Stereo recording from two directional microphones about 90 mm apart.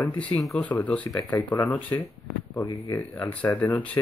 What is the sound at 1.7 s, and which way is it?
Speech, 20° left (ahead or behind).